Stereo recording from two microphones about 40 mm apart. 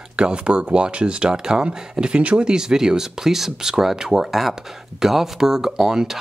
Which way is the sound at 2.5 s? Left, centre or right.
Centre.